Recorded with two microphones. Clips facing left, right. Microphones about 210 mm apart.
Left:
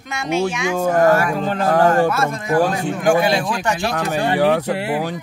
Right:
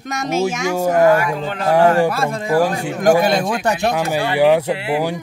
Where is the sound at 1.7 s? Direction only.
10° right (ahead or behind).